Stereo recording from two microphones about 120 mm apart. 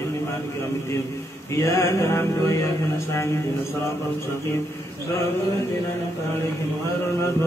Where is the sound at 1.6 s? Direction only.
25° left (ahead or behind).